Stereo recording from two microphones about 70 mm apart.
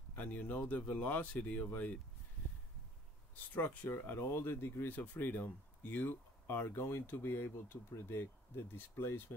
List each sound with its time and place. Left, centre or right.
0.1 s speech: left
3.5 s speech: left